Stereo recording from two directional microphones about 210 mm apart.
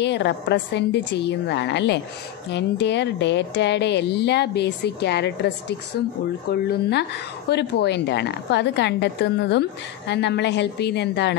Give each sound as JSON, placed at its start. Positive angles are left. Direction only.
{"t": 0.0, "sound": "a woman's voice", "side_deg": 55}